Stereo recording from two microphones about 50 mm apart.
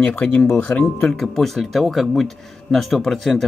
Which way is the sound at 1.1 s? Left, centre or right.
Centre.